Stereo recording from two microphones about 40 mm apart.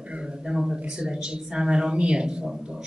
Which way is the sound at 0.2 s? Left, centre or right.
Centre.